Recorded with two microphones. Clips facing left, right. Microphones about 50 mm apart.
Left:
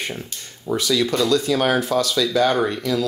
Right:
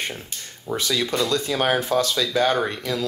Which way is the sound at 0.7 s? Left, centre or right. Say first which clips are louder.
Left 3 dB; right.